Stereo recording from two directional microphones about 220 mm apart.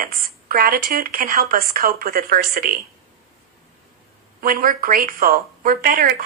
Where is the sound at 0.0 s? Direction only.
40° right (ahead or behind).